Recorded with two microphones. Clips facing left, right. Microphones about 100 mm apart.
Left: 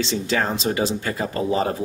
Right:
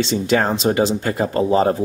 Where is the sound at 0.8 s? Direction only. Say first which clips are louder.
Right 5 dB; 25° right (ahead or behind).